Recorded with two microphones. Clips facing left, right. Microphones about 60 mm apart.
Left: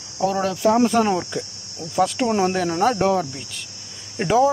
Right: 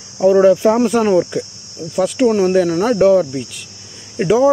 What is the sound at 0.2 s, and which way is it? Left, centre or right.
Speech, centre.